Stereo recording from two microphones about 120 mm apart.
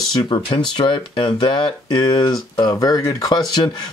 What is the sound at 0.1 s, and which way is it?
Speech, 40° left (ahead or behind).